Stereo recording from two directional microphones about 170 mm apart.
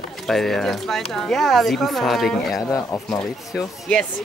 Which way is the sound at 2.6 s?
20° left (ahead or behind).